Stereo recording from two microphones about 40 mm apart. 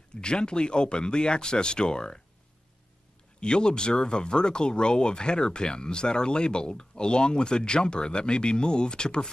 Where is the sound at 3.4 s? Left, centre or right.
Left.